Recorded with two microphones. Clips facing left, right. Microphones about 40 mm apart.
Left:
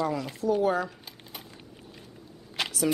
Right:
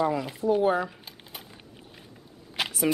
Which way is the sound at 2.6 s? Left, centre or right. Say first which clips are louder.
Right 1 dB; centre.